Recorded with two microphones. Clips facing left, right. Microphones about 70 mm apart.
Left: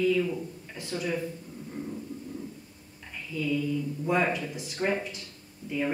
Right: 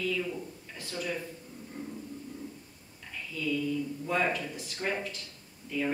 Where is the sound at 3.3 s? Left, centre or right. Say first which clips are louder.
Left 2 dB; centre.